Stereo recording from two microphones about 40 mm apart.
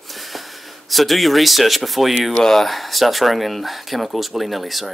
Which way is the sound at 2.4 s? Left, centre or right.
Centre.